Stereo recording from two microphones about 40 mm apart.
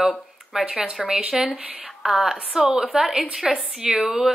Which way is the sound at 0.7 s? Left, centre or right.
Centre.